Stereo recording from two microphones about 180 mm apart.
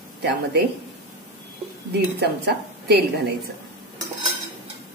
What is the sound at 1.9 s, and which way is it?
A woman's voice, 65° right (ahead or behind).